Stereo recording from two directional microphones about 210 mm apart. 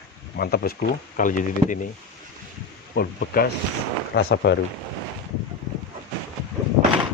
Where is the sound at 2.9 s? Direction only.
50° left (ahead or behind).